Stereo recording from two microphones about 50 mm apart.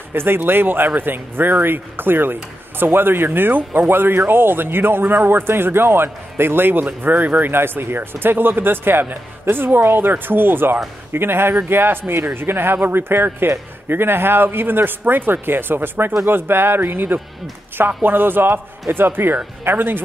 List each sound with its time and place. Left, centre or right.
0.1 s speech: right